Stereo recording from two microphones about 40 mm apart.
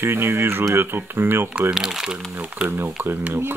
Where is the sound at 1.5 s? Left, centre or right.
Right.